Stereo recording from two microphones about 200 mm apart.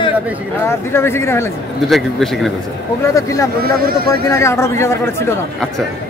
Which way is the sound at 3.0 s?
15° left (ahead or behind).